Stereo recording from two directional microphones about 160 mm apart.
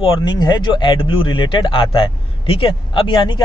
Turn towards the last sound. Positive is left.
turn(degrees=30)  # may be behind; listen again after turning